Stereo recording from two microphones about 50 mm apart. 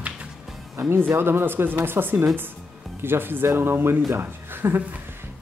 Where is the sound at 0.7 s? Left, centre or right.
Right.